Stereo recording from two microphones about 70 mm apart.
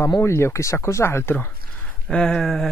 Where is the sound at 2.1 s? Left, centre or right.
Centre.